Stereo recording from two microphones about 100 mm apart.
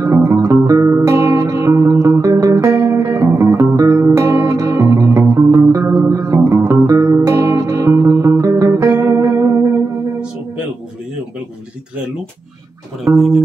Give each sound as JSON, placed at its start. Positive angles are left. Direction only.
{"t": 0.0, "sound": "music", "side_deg": -30}
{"t": 13.1, "sound": "music", "side_deg": -5}